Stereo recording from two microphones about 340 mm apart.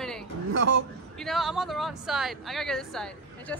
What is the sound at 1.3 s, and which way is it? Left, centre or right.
A woman's voice, centre.